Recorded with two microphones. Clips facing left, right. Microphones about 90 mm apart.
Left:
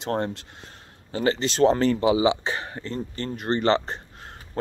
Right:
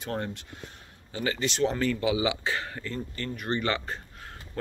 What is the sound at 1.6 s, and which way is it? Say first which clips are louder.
Speech: left 8 dB; 35° left (ahead or behind).